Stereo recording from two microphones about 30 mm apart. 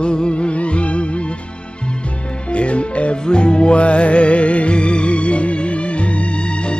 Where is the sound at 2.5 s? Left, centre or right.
Left.